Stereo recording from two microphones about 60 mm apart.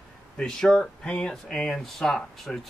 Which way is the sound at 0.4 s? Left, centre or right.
Centre.